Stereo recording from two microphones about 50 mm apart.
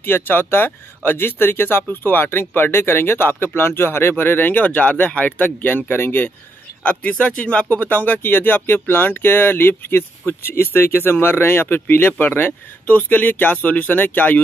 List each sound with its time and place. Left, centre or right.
0.0 s speech: left
6.8 s speech: left
7.7 s speech: left